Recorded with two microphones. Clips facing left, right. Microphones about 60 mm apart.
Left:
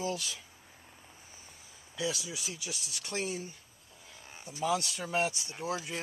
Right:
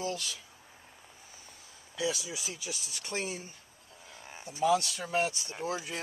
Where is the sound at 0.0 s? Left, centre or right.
Centre.